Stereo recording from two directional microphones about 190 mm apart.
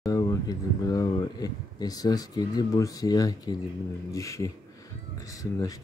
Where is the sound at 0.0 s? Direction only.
20° left (ahead or behind).